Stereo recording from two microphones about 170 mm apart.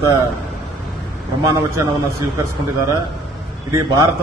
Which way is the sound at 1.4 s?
15° right (ahead or behind).